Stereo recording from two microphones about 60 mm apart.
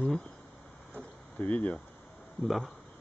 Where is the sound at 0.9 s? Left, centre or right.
Left.